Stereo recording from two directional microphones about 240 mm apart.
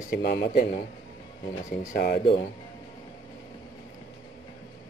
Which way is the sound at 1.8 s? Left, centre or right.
Left.